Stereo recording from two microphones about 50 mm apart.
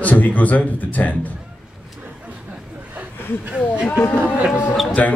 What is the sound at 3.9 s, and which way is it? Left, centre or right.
Speech, left.